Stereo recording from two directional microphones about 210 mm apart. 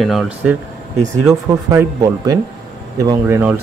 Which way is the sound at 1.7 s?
15° right (ahead or behind).